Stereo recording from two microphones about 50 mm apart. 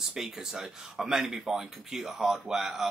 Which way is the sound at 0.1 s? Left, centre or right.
Centre.